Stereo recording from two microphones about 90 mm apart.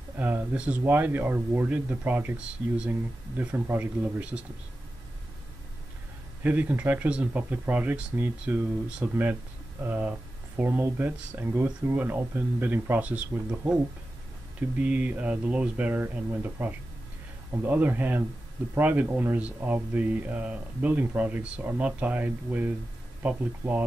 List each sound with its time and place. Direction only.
0.2 s speech: 20° right (ahead or behind)
6.4 s speech: 20° right (ahead or behind)
8.2 s speech: 25° right (ahead or behind)
8.8 s speech: 15° right (ahead or behind)
9.1 s speech: 25° right (ahead or behind)
14.8 s speech: 15° right (ahead or behind)